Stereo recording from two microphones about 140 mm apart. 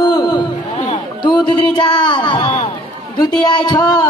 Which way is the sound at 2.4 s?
55° left (ahead or behind).